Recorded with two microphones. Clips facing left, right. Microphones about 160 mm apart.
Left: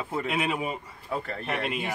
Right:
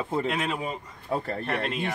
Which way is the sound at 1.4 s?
5° left (ahead or behind).